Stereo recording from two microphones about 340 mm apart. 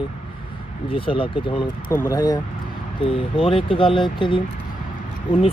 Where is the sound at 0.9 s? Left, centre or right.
Centre.